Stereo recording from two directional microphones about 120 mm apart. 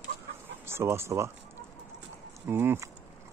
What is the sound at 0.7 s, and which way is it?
Speech, 20° right (ahead or behind).